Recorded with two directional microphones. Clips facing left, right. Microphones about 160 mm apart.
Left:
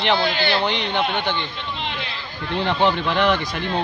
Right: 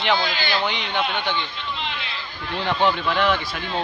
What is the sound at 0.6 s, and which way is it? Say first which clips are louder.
Speech: left 3 dB; 10° right (ahead or behind).